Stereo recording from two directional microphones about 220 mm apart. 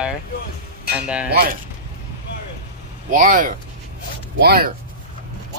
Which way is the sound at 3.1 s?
35° right (ahead or behind).